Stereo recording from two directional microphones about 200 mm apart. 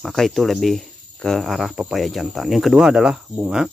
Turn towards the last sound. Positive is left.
turn(degrees=-5)  # may be behind; listen again after turning